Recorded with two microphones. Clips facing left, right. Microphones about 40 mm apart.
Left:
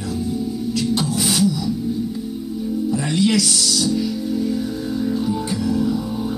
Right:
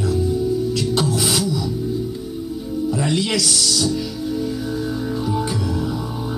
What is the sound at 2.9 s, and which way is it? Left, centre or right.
Music, right.